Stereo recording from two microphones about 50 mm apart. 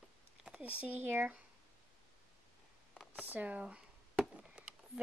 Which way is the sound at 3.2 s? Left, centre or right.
Right.